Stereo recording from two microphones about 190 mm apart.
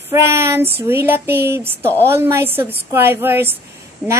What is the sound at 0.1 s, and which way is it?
A woman's voice, 15° right (ahead or behind).